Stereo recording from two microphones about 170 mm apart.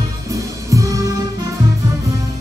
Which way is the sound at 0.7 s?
20° right (ahead or behind).